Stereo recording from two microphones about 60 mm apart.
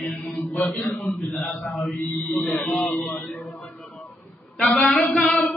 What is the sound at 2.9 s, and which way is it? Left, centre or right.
Speech, left.